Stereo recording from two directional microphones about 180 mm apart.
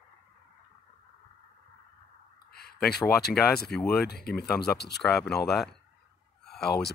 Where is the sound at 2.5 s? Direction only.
60° left (ahead or behind).